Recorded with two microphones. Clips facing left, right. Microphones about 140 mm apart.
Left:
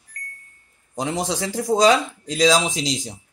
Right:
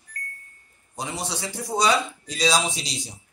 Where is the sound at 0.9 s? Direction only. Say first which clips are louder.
Left 7 dB; 90° left.